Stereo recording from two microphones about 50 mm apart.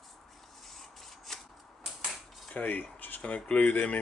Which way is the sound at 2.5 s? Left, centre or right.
Left.